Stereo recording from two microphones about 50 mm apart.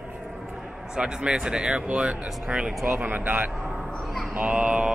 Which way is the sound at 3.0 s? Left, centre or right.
Right.